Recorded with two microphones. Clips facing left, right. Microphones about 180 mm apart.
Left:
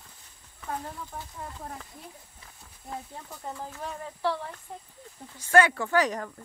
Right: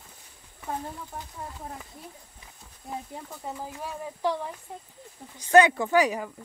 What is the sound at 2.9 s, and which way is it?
Speech, 10° right (ahead or behind).